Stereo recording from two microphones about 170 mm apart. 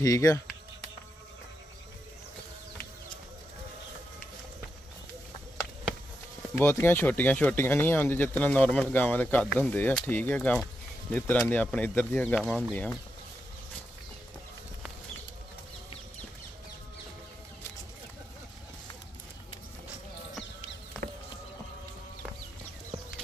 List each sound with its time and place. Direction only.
0.0 s speech: 20° left (ahead or behind)
6.6 s speech: 15° left (ahead or behind)
21.0 s a sound: 55° right (ahead or behind)